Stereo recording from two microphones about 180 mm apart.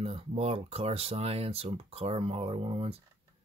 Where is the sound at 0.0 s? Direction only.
35° right (ahead or behind).